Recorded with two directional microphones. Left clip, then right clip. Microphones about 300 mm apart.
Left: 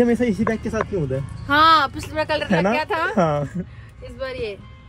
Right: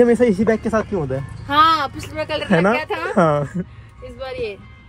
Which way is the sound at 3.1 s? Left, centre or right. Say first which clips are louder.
Right 9 dB; right.